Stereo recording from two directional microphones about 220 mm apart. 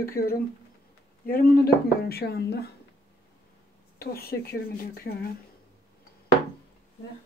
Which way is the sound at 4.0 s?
45° left (ahead or behind).